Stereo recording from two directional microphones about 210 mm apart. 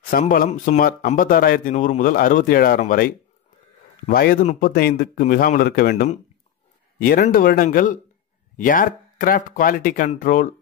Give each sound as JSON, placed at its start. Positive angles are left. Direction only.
{"t": 0.1, "sound": "speech", "side_deg": 45}